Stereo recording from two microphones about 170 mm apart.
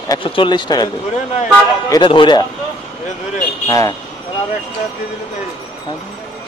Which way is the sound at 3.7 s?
20° left (ahead or behind).